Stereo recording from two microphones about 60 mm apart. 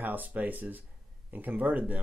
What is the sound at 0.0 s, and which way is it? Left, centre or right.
Speech, right.